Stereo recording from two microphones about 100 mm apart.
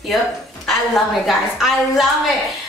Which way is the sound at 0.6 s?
Centre (ahead or behind).